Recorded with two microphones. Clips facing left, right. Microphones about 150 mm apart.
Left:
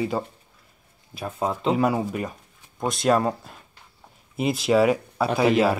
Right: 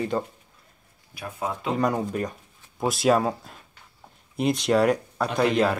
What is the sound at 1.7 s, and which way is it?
Speech, 5° left (ahead or behind).